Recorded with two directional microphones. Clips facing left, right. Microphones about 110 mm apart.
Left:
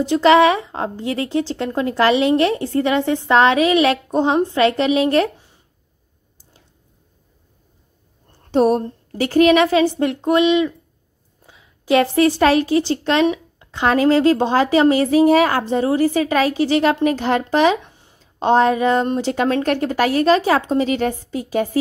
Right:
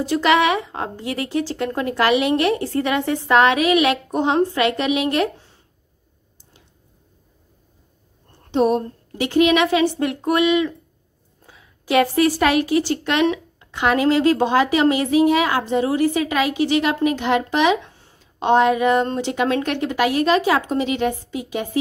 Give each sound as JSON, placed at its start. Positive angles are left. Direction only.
{"t": 0.0, "sound": "speech", "side_deg": 25}
{"t": 8.5, "sound": "a woman's voice", "side_deg": 40}
{"t": 17.8, "sound": "a sound", "side_deg": 15}
{"t": 18.2, "sound": "speech", "side_deg": 35}